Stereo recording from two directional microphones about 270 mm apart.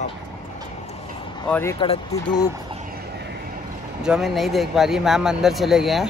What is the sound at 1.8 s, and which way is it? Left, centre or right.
Speech, centre.